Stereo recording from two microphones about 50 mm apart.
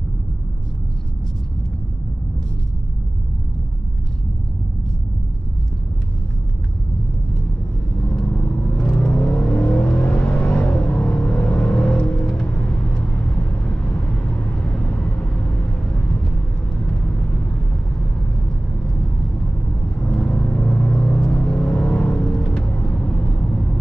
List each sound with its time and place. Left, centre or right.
8.3 s vehicle: left
20.0 s vehicle: centre